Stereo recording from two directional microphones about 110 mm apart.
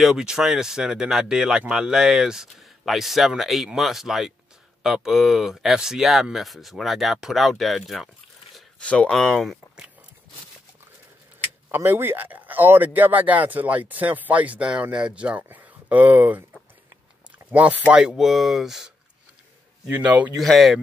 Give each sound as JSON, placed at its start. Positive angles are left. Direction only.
{"t": 0.0, "sound": "speech", "side_deg": -5}
{"t": 11.7, "sound": "speech", "side_deg": -20}
{"t": 17.5, "sound": "speech", "side_deg": -15}
{"t": 19.9, "sound": "speech", "side_deg": -15}
{"t": 20.3, "sound": "speech", "side_deg": 0}